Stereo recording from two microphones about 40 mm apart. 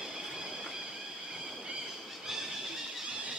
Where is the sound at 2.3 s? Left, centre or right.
Centre.